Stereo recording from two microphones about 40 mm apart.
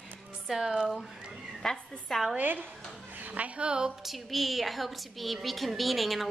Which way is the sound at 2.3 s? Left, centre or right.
Right.